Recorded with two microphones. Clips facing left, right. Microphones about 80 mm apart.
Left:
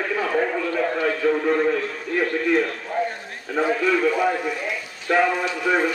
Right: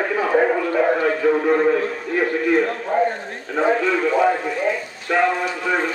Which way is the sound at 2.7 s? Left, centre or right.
Right.